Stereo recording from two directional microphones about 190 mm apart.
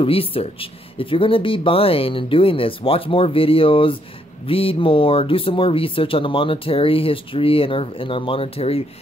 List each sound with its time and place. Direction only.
0.0 s speech: 30° left (ahead or behind)